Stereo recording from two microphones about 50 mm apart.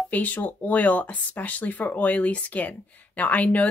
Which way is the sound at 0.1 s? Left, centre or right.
Left.